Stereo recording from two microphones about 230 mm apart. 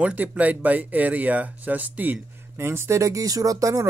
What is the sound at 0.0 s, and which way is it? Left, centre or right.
Speech, centre.